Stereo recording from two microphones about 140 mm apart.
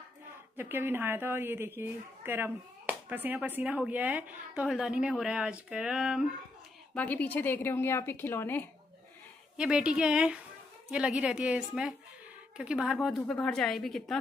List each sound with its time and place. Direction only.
0.6 s a woman's voice: 15° right (ahead or behind)
6.9 s a woman's voice: 10° left (ahead or behind)
9.6 s a woman's voice: 5° right (ahead or behind)